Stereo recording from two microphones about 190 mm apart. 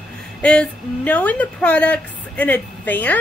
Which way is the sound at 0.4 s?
5° left (ahead or behind).